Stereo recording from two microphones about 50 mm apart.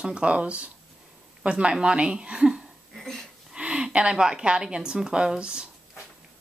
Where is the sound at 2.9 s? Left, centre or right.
Centre.